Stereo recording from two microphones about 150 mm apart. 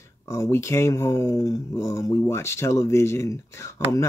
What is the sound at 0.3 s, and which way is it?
Speech, 20° left (ahead or behind).